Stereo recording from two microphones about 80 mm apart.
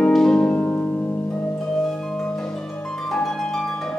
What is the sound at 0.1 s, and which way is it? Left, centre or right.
Music, centre.